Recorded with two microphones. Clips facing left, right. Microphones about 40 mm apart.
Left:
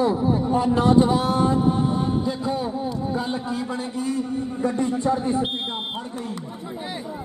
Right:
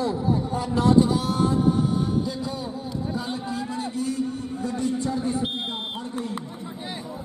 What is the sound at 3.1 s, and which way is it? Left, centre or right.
Speech, centre.